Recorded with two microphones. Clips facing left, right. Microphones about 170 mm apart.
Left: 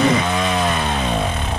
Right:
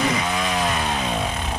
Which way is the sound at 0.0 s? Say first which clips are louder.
Left 6 dB; 60° left (ahead or behind).